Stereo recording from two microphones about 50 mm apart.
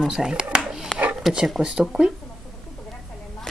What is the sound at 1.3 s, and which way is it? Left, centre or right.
Speech, centre.